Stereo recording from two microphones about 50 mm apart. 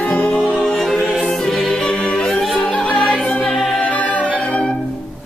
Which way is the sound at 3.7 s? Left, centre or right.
Left.